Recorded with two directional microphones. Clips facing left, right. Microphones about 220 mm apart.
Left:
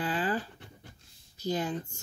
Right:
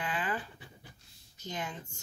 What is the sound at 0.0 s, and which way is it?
Dog, 35° left (ahead or behind).